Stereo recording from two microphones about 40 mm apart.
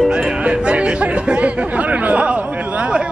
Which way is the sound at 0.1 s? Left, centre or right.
Right.